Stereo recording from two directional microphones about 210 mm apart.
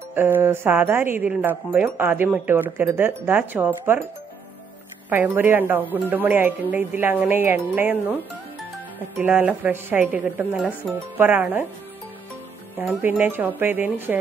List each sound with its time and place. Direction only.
0.1 s speech: 10° right (ahead or behind)
5.1 s speech: 10° right (ahead or behind)
9.2 s speech: 10° right (ahead or behind)
12.7 s speech: 10° right (ahead or behind)